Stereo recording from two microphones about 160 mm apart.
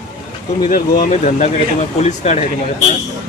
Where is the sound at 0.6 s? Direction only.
60° left (ahead or behind).